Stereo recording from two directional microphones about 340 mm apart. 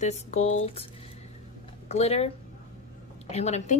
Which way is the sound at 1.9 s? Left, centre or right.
Centre.